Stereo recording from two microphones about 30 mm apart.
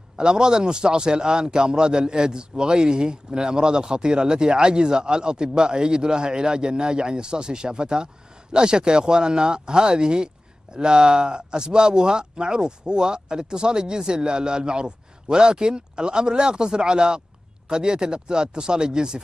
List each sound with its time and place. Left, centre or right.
0.2 s a man's voice: right